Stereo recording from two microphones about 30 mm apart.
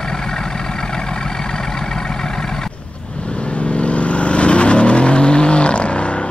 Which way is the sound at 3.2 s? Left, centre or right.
Left.